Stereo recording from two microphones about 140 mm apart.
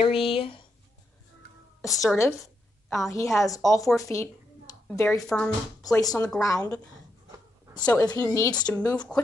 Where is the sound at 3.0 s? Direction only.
20° left (ahead or behind).